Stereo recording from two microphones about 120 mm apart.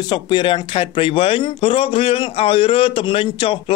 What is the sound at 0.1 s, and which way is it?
Speech, 40° left (ahead or behind).